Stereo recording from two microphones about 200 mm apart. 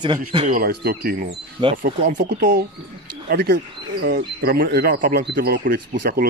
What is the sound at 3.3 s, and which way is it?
Speech, 55° right (ahead or behind).